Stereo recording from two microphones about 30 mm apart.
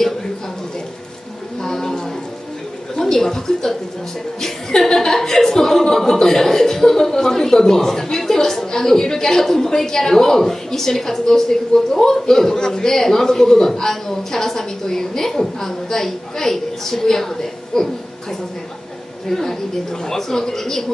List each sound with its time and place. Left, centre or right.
1.6 s a sound: centre
3.0 s speech: centre
19.2 s speech: centre